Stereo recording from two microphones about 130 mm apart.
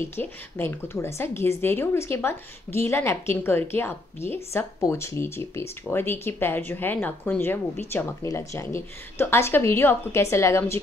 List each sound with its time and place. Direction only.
0.0 s speech: 15° left (ahead or behind)